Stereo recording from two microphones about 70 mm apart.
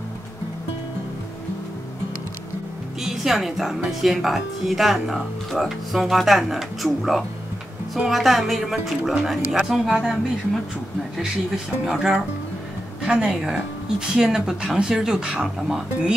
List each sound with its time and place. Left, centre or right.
3.0 s a woman's voice: centre